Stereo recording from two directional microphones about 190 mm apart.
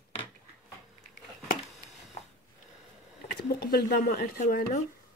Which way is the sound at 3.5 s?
55° left (ahead or behind).